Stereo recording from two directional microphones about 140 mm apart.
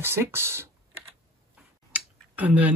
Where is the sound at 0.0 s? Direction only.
15° right (ahead or behind).